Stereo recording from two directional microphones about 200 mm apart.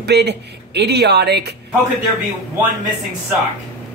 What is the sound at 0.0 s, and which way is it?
Speech, 55° right (ahead or behind).